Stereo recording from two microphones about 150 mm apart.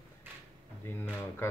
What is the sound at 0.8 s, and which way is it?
Speech, 15° left (ahead or behind).